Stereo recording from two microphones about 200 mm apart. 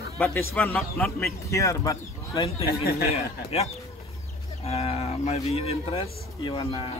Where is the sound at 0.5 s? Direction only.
5° left (ahead or behind).